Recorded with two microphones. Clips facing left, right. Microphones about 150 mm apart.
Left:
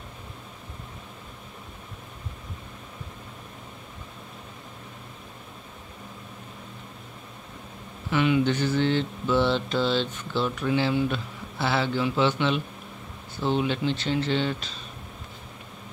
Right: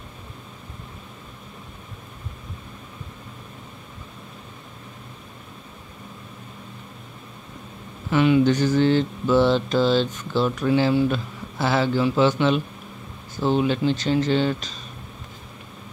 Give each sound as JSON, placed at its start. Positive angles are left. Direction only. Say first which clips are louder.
{"t": 8.1, "sound": "mantra", "louder": "right 5 dB", "side_deg": -40}